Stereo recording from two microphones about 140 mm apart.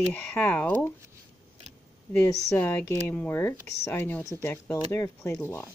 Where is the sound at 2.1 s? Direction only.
15° left (ahead or behind).